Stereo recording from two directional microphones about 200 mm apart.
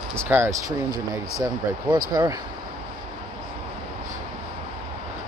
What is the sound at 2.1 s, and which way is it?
Speech, 20° right (ahead or behind).